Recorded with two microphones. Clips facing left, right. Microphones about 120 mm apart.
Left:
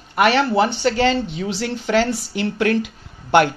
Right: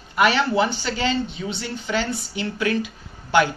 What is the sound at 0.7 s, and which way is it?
A woman's voice, 65° left (ahead or behind).